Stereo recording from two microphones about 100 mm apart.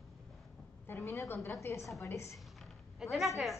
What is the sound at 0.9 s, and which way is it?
A woman's voice, 30° left (ahead or behind).